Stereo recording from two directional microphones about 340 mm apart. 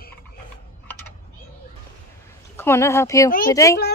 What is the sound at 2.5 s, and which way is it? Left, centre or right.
Speech, centre.